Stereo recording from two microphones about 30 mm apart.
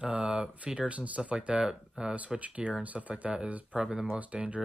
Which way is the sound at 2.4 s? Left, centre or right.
Right.